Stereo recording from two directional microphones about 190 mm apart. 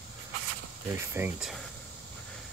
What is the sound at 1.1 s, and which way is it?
Speech, 10° right (ahead or behind).